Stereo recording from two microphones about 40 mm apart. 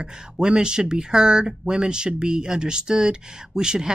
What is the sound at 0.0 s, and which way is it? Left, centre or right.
Speech, centre.